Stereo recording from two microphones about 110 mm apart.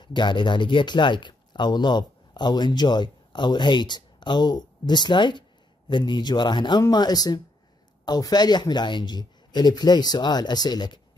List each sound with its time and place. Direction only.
0.0 s speech: 45° left (ahead or behind)